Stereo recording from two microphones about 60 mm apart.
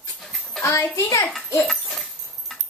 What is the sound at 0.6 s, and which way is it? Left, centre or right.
Speech, left.